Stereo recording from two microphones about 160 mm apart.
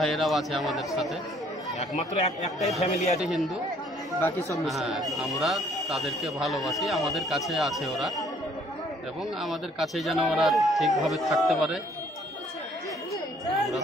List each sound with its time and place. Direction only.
0.0 s speech: centre (ahead or behind)
1.8 s speech: 45° left (ahead or behind)
3.2 s speech: centre (ahead or behind)
4.2 s speech: 15° left (ahead or behind)
4.6 s speech: centre (ahead or behind)
9.4 s speech: centre (ahead or behind)